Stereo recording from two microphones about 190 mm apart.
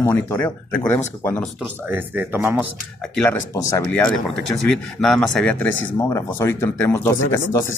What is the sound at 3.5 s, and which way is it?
Speech, 15° left (ahead or behind).